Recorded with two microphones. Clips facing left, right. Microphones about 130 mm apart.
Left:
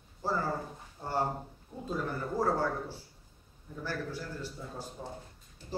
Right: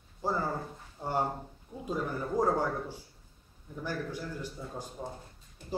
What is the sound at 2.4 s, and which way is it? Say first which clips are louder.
Speech: right 2 dB; 15° right (ahead or behind).